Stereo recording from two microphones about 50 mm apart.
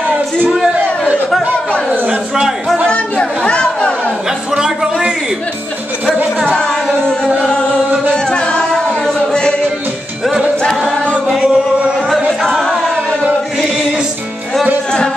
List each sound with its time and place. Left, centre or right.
2.9 s chatter: centre
4.6 s a sound: centre
8.1 s music: centre
11.3 s music: right
12.3 s music: centre